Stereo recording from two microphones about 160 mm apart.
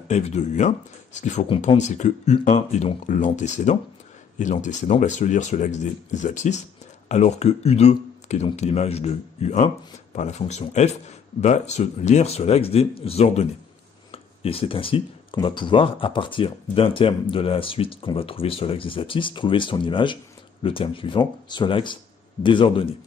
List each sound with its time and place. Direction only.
0.1 s speech: 45° left (ahead or behind)